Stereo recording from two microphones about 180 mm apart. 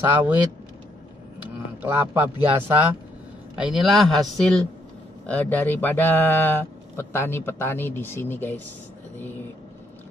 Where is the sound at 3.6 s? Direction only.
Centre (ahead or behind).